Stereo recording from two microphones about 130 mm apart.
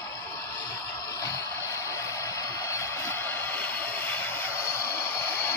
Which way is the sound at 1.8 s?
25° left (ahead or behind).